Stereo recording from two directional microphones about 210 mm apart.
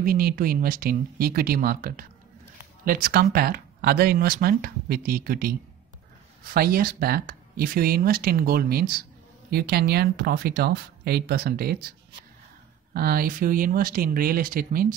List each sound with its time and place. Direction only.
0.0 s speech: 45° right (ahead or behind)
12.9 s speech: 45° right (ahead or behind)